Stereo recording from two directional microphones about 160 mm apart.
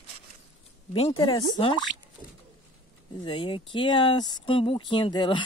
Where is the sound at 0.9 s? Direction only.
35° left (ahead or behind).